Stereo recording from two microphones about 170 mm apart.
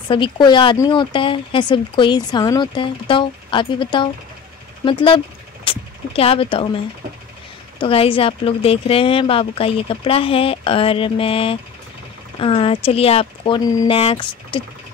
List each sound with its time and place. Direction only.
0.1 s speech: 30° left (ahead or behind)
7.8 s speech: 35° left (ahead or behind)